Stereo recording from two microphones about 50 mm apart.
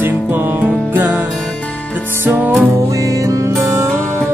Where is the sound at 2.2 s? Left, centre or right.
Right.